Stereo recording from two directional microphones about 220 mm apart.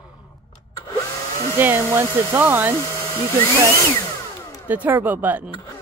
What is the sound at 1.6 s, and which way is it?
Speech, 10° right (ahead or behind).